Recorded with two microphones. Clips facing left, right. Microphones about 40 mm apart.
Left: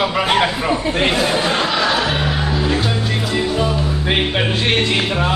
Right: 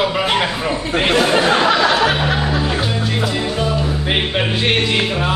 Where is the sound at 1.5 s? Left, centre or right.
Right.